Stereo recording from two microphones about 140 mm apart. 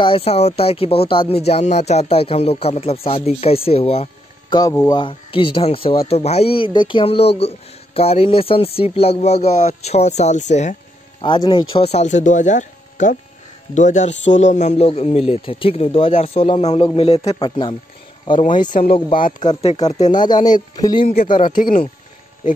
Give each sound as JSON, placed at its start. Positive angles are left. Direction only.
{"t": 0.0, "sound": "speech", "side_deg": 40}
{"t": 11.2, "sound": "speech", "side_deg": 35}
{"t": 17.2, "sound": "speech", "side_deg": 30}
{"t": 18.9, "sound": "speech", "side_deg": 40}
{"t": 20.1, "sound": "speech", "side_deg": 30}
{"t": 21.1, "sound": "speech", "side_deg": 80}